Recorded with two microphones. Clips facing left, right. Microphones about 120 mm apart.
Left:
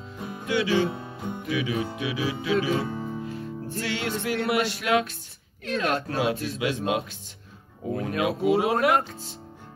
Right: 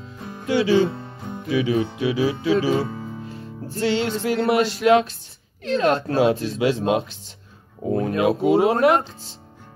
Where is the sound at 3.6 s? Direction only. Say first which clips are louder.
Right 9 dB; 30° right (ahead or behind).